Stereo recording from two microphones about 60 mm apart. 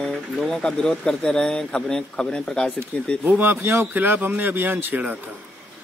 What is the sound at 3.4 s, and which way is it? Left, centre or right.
Speech, right.